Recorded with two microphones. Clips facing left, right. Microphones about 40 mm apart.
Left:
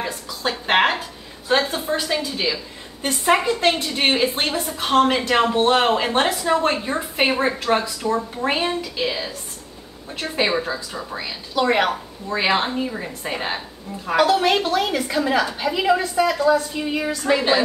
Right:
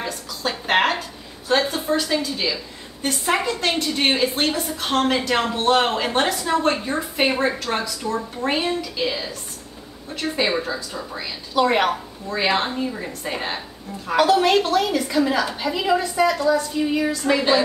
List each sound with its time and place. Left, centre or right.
0.0 s a sound: centre
1.5 s a woman's voice: centre
12.3 s a woman's voice: centre
16.3 s a woman's voice: centre